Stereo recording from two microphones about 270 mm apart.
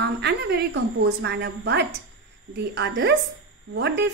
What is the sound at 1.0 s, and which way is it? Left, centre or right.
A woman's voice, right.